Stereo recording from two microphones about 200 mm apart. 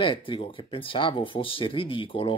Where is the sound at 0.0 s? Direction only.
25° left (ahead or behind).